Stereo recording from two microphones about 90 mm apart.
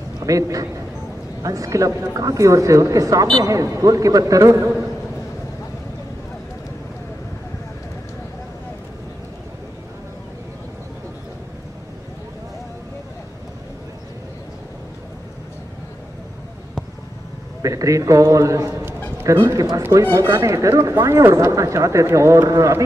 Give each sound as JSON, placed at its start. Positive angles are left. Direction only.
{"t": 0.2, "sound": "a man's voice", "side_deg": -40}
{"t": 17.6, "sound": "speech", "side_deg": -40}
{"t": 19.8, "sound": "speech", "side_deg": -30}